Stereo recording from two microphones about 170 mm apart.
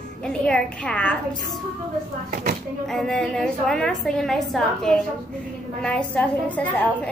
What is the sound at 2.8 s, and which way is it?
A woman's voice, centre (ahead or behind).